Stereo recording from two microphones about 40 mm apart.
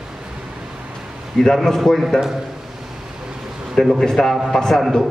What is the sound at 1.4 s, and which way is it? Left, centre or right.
Speech, centre.